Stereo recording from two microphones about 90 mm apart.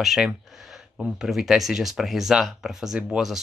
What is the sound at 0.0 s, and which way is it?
Speech, 5° right (ahead or behind).